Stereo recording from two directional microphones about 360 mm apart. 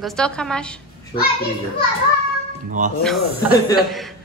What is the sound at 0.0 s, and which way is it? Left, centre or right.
Speech, centre.